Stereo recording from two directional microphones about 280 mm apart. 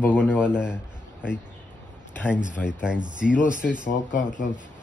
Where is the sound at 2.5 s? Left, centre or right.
Centre.